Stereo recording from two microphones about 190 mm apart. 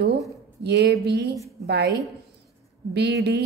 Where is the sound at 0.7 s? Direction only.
60° right (ahead or behind).